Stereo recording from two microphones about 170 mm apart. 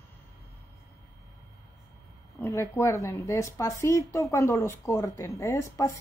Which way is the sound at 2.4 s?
15° left (ahead or behind).